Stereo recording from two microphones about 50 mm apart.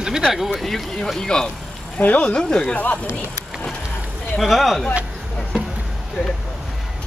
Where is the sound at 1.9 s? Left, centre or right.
Left.